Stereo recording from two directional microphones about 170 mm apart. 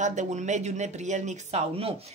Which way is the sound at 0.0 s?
45° right (ahead or behind).